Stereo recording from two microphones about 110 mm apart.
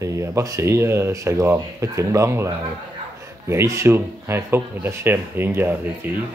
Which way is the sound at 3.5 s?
25° right (ahead or behind).